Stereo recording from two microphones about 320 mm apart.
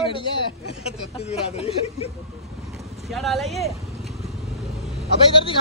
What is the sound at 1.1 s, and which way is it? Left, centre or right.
Speech, centre.